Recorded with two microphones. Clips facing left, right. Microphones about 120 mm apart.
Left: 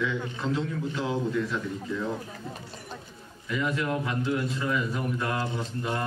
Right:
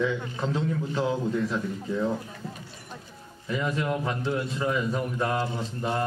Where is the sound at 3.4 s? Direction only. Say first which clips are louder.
Right 1 dB; 30° right (ahead or behind).